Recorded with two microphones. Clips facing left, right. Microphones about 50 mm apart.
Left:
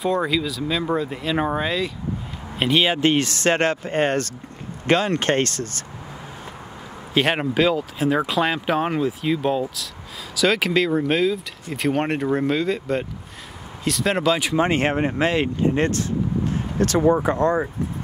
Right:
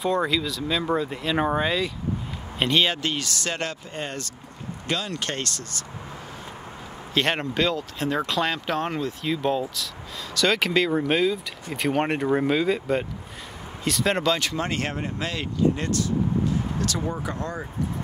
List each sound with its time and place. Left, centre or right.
0.0 s speech: centre
3.0 s speech: left
7.2 s speech: centre; by 17.6 s left